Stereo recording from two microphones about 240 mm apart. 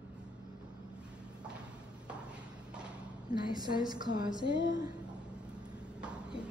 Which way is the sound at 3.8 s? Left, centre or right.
Centre.